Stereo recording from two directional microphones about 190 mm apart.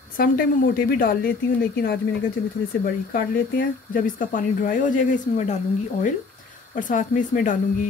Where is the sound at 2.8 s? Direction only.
50° left (ahead or behind).